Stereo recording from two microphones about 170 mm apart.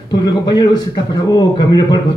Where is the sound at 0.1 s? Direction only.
25° left (ahead or behind).